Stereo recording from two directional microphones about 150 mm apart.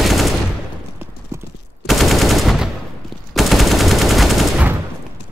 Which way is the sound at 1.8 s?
Centre (ahead or behind).